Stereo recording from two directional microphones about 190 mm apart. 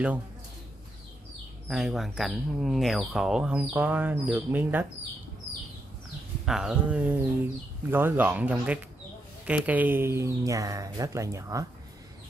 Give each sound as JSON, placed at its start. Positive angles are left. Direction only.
{"t": 1.7, "sound": "speech", "side_deg": 0}
{"t": 6.4, "sound": "speech", "side_deg": -5}